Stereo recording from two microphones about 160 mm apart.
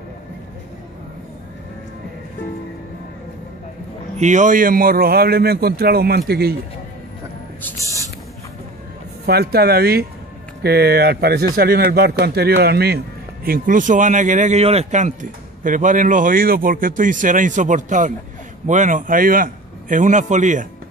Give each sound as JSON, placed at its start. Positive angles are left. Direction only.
{"t": 4.2, "sound": "speech", "side_deg": -50}
{"t": 9.2, "sound": "a man's voice", "side_deg": -75}